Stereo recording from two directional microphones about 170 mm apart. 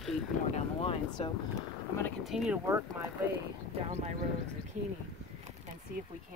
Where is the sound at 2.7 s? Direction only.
15° right (ahead or behind).